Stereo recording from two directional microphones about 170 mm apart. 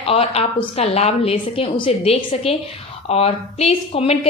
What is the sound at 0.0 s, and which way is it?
A woman's voice, 35° left (ahead or behind).